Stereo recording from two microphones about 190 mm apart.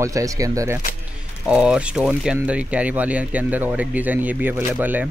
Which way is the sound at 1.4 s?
5° right (ahead or behind).